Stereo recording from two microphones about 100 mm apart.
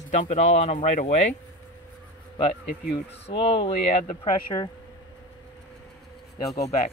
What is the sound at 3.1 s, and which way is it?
Speech, 65° left (ahead or behind).